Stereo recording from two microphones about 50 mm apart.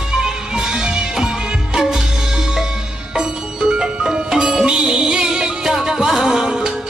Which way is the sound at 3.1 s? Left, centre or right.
Centre.